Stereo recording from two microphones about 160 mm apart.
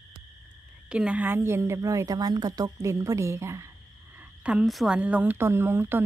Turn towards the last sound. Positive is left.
turn(degrees=-15)  # may be behind; listen again after turning